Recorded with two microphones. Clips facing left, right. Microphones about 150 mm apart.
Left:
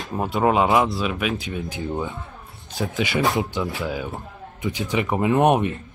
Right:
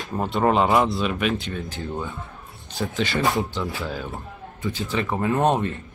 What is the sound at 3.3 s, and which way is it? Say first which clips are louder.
Speech: left 1 dB; 20° left (ahead or behind).